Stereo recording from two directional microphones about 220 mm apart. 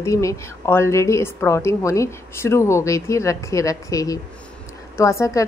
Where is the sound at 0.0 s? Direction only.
15° left (ahead or behind).